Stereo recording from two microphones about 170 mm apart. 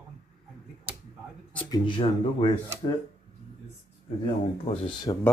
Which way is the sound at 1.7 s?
25° left (ahead or behind).